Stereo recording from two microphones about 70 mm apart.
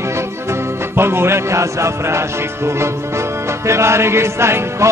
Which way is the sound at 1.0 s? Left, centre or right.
Right.